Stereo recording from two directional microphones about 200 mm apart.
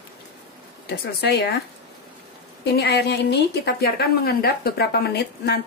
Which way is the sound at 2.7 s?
55° left (ahead or behind).